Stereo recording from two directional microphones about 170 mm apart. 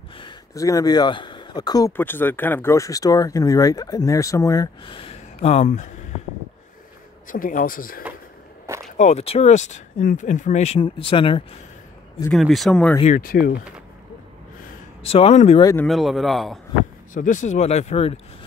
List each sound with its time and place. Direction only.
0.2 s speech: 20° left (ahead or behind)
1.9 s speech: 10° left (ahead or behind)
4.8 s speech: 30° left (ahead or behind)
7.2 s speech: 50° left (ahead or behind)
8.9 s speech: 40° left (ahead or behind)
12.3 s a man's voice: centre (ahead or behind)
13.0 s speech: 55° left (ahead or behind)
15.0 s speech: 35° left (ahead or behind)
15.6 s speech: 15° left (ahead or behind)
15.9 s a man's voice: centre (ahead or behind)
17.1 s speech: 50° left (ahead or behind)